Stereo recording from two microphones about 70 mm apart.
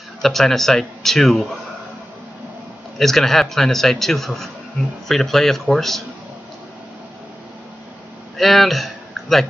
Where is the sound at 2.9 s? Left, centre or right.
Centre.